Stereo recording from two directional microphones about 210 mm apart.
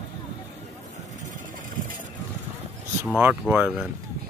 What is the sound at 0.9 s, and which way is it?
Vehicle, 40° right (ahead or behind).